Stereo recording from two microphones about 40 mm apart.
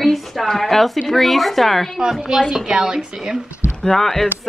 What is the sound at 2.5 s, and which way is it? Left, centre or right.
Speech, centre.